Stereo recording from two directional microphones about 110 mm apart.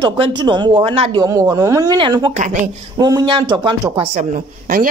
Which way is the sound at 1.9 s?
45° right (ahead or behind).